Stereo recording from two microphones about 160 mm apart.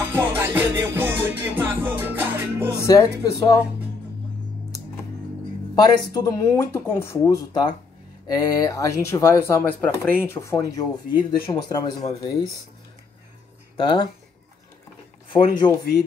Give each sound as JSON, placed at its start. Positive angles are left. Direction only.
{"t": 0.0, "sound": "music", "side_deg": -15}
{"t": 2.8, "sound": "speech", "side_deg": 20}
{"t": 5.8, "sound": "speech", "side_deg": 25}
{"t": 13.7, "sound": "speech", "side_deg": 30}
{"t": 15.2, "sound": "speech", "side_deg": 30}